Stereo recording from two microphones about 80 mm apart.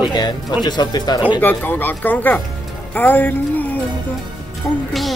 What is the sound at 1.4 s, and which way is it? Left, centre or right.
Speech, left.